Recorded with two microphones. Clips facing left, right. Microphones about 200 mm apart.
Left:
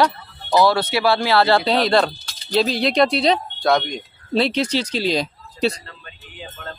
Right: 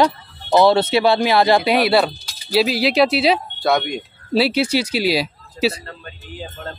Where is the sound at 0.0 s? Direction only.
25° right (ahead or behind); by 5.8 s 5° right (ahead or behind).